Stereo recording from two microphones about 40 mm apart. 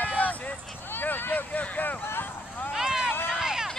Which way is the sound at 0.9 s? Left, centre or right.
Left.